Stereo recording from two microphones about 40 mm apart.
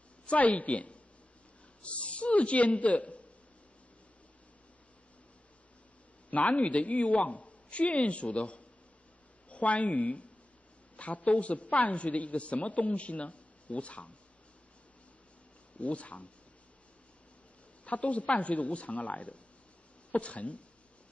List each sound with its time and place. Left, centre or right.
0.3 s a woman's voice: left
6.3 s a woman's voice: left
15.8 s a woman's voice: left
17.8 s a woman's voice: left